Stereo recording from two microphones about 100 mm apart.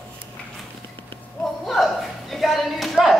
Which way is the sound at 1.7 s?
Centre (ahead or behind).